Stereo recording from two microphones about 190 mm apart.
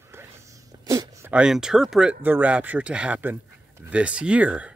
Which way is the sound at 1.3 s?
5° right (ahead or behind).